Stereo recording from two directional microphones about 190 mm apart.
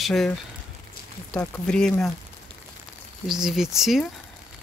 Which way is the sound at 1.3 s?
5° left (ahead or behind).